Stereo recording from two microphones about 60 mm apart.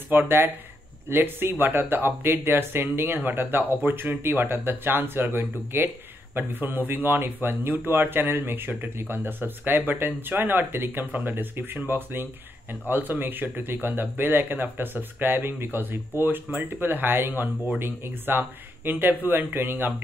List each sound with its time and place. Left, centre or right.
0.1 s speech: right